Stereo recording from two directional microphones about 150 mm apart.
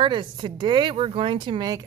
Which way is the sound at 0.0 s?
30° right (ahead or behind).